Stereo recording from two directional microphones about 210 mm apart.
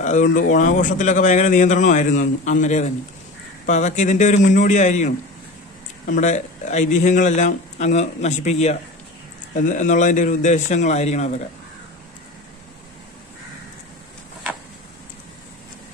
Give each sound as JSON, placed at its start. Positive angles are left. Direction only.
{"t": 0.0, "sound": "a man's voice", "side_deg": 35}